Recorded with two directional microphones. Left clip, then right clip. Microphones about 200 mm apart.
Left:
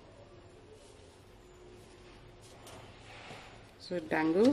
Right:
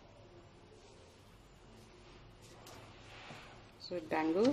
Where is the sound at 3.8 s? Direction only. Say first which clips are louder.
Left 4 dB; 15° left (ahead or behind).